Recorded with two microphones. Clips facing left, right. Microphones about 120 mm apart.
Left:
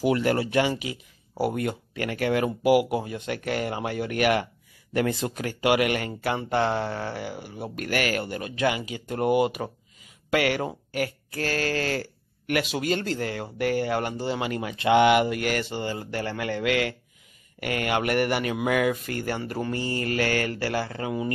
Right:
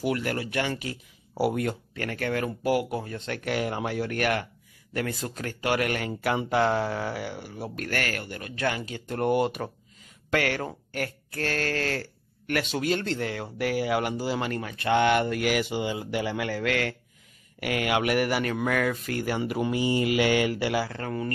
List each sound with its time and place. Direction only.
0.0 s speech: 25° left (ahead or behind)
0.7 s speech: 10° left (ahead or behind)
3.4 s speech: centre (ahead or behind)
4.9 s speech: 20° left (ahead or behind)
6.0 s speech: 5° right (ahead or behind); by 8.6 s 20° left (ahead or behind)
8.6 s speech: 10° left (ahead or behind)
14.4 s speech: 5° left (ahead or behind)
18.5 s mantra: 10° left (ahead or behind); by 21.0 s 5° right (ahead or behind)
21.0 s speech: 10° left (ahead or behind)